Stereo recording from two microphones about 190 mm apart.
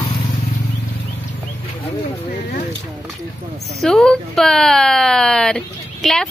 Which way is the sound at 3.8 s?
5° left (ahead or behind).